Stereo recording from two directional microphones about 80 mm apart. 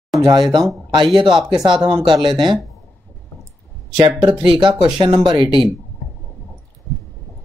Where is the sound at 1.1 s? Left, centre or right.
Right.